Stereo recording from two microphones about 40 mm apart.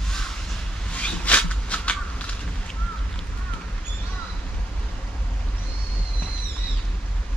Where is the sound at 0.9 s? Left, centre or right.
Left.